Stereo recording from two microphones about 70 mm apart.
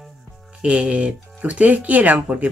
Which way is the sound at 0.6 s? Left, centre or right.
Centre.